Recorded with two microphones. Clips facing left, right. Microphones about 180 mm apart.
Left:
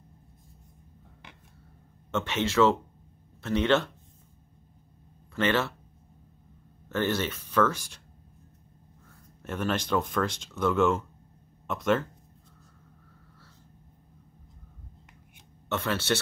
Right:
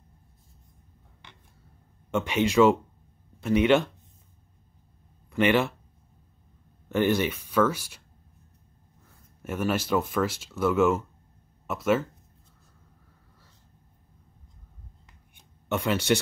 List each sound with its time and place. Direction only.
2.0 s speech: 15° right (ahead or behind)
5.3 s speech: 15° right (ahead or behind)
6.9 s speech: 15° right (ahead or behind)
9.4 s speech: 10° right (ahead or behind)
15.7 s speech: 15° right (ahead or behind)